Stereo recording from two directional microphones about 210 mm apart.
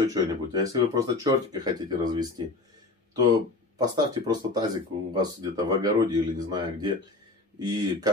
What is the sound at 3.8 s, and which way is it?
Speech, 20° right (ahead or behind).